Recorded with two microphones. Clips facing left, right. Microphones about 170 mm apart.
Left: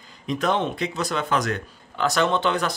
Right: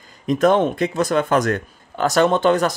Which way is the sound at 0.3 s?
50° right (ahead or behind).